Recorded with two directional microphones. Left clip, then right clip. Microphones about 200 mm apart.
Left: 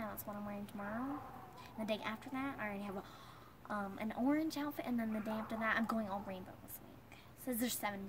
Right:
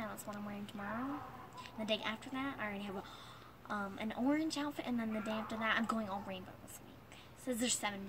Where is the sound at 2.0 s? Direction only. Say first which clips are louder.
Right 2 dB; 15° left (ahead or behind).